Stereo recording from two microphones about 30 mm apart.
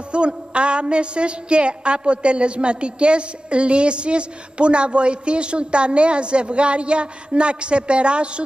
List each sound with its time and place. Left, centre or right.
0.1 s a woman's voice: right